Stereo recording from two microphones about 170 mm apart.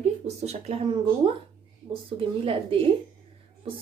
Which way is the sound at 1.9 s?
30° right (ahead or behind).